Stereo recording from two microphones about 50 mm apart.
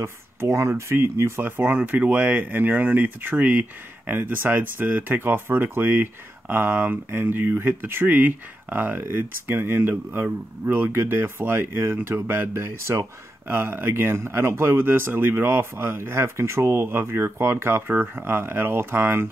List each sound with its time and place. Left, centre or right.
0.0 s speech: right
1.4 s speech: right
7.1 s speech: right
12.6 s speech: right